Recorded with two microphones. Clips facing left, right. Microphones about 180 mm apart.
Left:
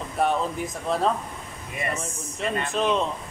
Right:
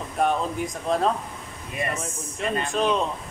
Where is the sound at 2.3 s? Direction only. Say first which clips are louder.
Right 1 dB; centre (ahead or behind).